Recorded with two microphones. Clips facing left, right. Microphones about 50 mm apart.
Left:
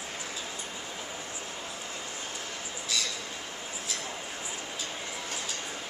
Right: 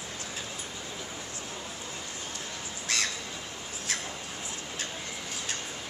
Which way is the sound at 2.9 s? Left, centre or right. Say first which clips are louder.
Right 2 dB; right.